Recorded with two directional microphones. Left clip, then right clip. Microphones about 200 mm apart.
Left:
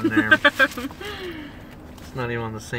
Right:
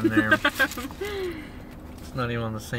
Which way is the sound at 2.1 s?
15° right (ahead or behind).